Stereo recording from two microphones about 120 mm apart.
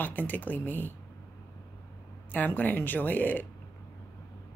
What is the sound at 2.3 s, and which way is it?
Speech, 15° left (ahead or behind).